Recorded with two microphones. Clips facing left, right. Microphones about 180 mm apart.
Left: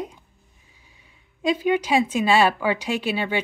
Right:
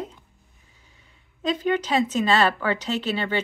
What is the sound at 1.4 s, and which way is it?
Speech, 10° left (ahead or behind).